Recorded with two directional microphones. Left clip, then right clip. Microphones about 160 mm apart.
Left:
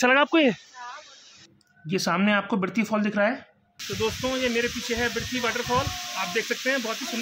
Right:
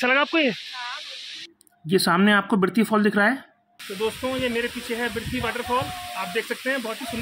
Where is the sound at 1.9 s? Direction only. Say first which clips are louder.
Right 5 dB; 20° right (ahead or behind).